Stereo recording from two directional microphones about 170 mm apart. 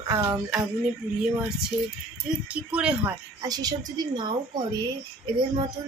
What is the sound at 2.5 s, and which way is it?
Speech, 5° right (ahead or behind).